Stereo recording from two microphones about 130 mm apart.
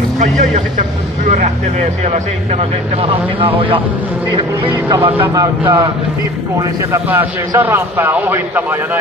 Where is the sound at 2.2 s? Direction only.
55° right (ahead or behind).